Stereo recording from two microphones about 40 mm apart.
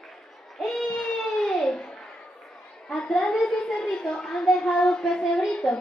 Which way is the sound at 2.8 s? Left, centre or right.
Left.